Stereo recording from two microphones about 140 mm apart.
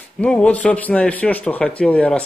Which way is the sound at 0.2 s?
10° left (ahead or behind).